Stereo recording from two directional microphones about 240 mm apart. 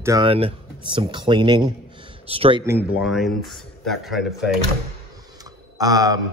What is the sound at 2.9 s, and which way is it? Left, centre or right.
Speech, centre.